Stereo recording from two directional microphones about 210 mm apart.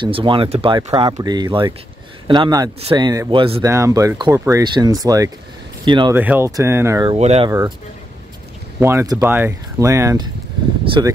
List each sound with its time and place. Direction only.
0.0 s speech: 25° right (ahead or behind)
3.6 s speech: 15° right (ahead or behind)
6.1 s speech: 10° right (ahead or behind)
7.2 s speech: 30° right (ahead or behind)
8.7 s speech: 15° right (ahead or behind)